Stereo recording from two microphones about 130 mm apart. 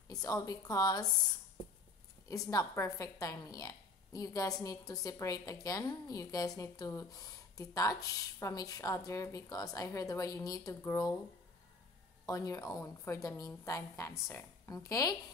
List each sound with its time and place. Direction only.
0.1 s a woman's voice: 30° left (ahead or behind)
2.2 s a woman's voice: 25° left (ahead or behind)
12.3 s a woman's voice: 25° left (ahead or behind)